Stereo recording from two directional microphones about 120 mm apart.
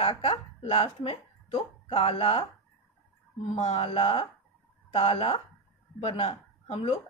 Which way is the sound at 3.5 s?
60° left (ahead or behind).